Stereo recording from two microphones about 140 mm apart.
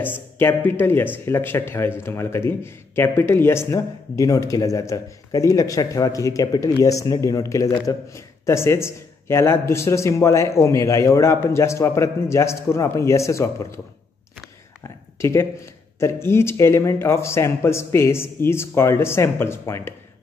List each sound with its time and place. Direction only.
0.0 s speech: 15° left (ahead or behind)
14.8 s speech: 20° left (ahead or behind)